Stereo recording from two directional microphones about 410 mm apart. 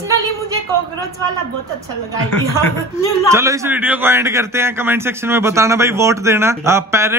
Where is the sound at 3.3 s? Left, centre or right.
Centre.